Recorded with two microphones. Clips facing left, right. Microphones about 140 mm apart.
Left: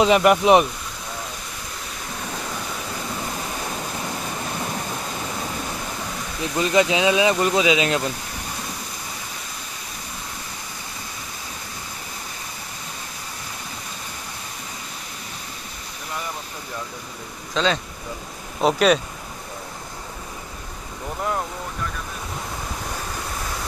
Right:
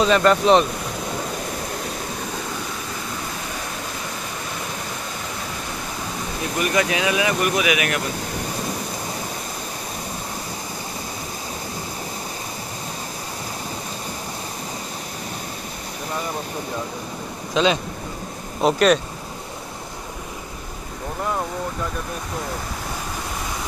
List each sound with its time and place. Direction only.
0.0 s speech: 15° left (ahead or behind)
6.6 s speech: 20° left (ahead or behind)
17.6 s speech: 15° right (ahead or behind)
18.6 s speech: centre (ahead or behind)